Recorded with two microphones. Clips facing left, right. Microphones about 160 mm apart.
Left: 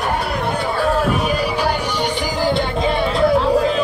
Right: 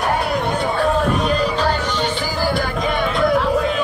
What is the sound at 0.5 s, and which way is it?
Music, 5° left (ahead or behind).